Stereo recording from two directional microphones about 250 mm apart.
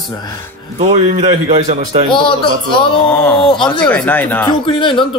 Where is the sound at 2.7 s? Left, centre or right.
Centre.